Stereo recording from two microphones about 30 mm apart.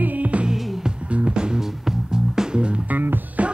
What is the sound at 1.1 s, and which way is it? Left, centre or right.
Music, right.